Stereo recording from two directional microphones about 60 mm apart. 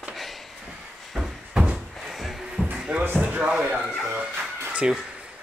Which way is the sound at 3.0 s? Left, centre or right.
Right.